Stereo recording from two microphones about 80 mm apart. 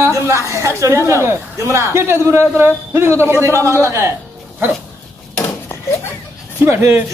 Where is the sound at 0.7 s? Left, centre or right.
Right.